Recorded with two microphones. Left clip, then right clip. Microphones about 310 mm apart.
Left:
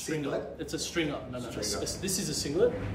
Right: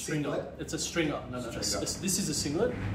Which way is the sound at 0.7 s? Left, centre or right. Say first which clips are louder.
Right 1 dB; centre.